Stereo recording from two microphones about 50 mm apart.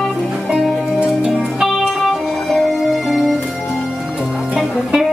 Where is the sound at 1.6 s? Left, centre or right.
Centre.